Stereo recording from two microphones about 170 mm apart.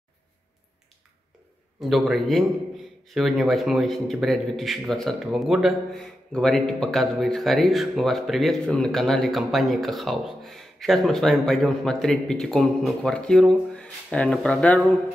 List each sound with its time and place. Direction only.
1.8 s a man's voice: centre (ahead or behind)